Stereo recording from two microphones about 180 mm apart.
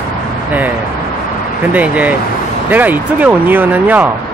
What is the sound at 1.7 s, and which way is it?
Speech, 10° right (ahead or behind).